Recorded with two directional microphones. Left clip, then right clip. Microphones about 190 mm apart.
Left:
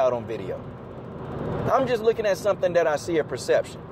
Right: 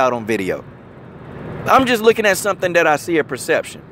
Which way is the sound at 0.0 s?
50° right (ahead or behind).